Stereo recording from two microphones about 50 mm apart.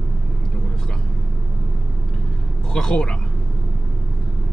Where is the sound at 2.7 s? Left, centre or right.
Centre.